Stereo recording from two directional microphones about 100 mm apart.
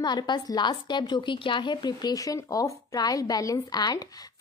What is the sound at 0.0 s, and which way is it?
A woman's voice, 45° left (ahead or behind).